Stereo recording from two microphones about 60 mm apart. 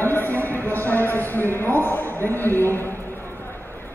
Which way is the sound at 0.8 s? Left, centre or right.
Left.